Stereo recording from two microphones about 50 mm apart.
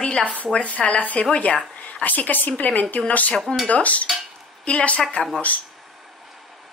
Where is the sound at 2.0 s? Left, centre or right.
Left.